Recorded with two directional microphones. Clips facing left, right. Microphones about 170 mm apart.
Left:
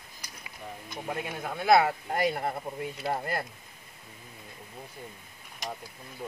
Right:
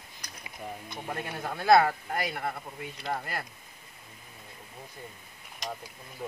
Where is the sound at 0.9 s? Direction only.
10° left (ahead or behind).